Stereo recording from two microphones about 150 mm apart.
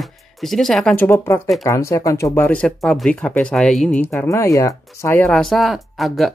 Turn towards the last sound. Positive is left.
turn(degrees=0)  # may be behind; listen again after turning